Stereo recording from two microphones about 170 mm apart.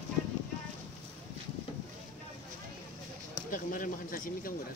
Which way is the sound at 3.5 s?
55° left (ahead or behind).